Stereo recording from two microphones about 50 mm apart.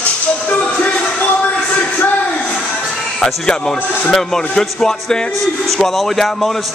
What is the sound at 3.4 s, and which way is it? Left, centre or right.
A man's voice, centre.